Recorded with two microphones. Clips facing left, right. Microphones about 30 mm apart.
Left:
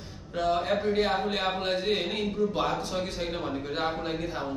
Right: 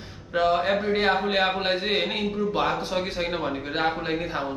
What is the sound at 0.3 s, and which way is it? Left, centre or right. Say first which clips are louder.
Speech: right 5 dB; right.